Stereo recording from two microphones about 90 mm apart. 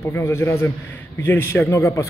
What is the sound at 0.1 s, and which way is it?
A man's voice, 30° left (ahead or behind).